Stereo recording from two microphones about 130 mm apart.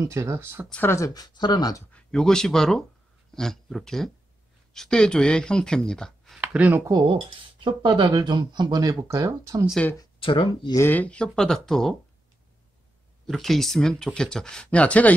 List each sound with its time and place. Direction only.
0.0 s speech: 20° right (ahead or behind)
0.7 s speech: 15° left (ahead or behind); by 1.8 s 30° left (ahead or behind)
1.9 s speech: 10° left (ahead or behind)
6.4 s speech: 10° right (ahead or behind)
6.9 s speech: 35° right (ahead or behind)
10.2 s speech: 45° left (ahead or behind)
10.7 s speech: 15° left (ahead or behind)
13.3 s speech: centre (ahead or behind)